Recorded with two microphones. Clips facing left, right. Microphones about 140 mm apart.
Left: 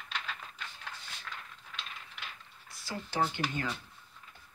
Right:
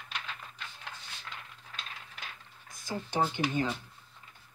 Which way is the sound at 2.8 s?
20° right (ahead or behind).